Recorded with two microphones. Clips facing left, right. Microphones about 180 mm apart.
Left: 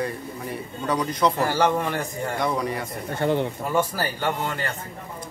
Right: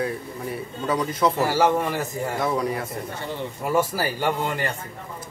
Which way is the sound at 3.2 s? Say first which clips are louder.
Left 14 dB; 60° left (ahead or behind).